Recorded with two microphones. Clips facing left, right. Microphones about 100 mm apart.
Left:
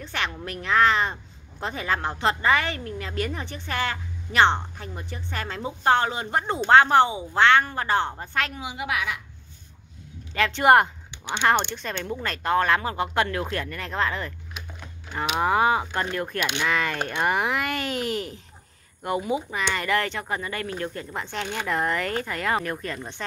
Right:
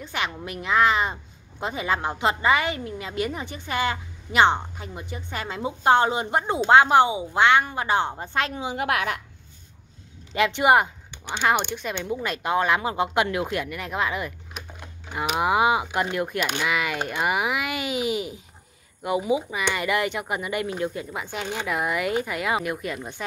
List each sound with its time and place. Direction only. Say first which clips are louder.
0.0 s a woman's voice: right 1 dB; 10° right (ahead or behind)
8.7 s a woman's voice: right 3 dB; 55° right (ahead or behind)
10.3 s a woman's voice: right 2 dB; 15° right (ahead or behind)
10.6 s a woman's voice: left 3 dB; 5° right (ahead or behind)